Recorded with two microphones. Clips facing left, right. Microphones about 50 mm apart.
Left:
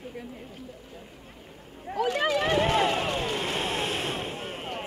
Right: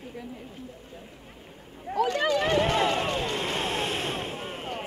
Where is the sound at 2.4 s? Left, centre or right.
Centre.